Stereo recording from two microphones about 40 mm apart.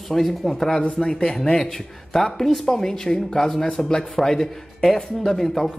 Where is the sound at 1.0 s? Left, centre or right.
Centre.